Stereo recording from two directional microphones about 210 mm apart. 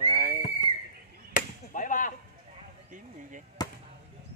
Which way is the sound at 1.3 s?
40° left (ahead or behind).